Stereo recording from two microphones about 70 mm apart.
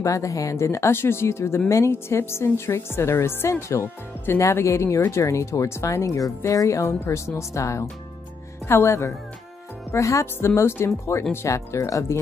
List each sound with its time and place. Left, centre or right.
0.0 s speech: left